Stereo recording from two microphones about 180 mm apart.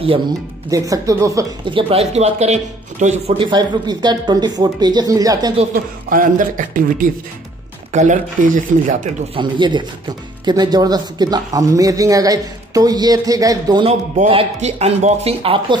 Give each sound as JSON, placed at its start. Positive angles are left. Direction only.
{"t": 0.7, "sound": "speech", "side_deg": -20}
{"t": 6.0, "sound": "speech", "side_deg": -50}
{"t": 9.3, "sound": "speech", "side_deg": -25}
{"t": 13.8, "sound": "speech", "side_deg": -35}